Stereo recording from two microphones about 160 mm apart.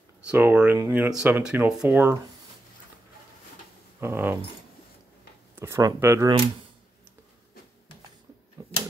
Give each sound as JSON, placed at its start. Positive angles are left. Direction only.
{"t": 0.3, "sound": "speech", "side_deg": -10}
{"t": 4.0, "sound": "speech", "side_deg": -15}
{"t": 5.6, "sound": "speech", "side_deg": -20}